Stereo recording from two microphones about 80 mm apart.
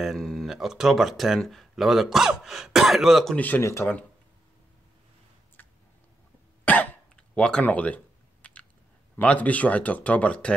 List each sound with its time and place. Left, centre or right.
0.0 s speech: centre
3.3 s speech: left
5.6 s a sound: left
6.6 s cough: left
7.2 s a sound: centre
9.1 s speech: centre